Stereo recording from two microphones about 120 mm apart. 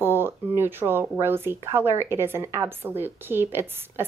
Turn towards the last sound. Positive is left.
turn(degrees=-20)  # may be behind; listen again after turning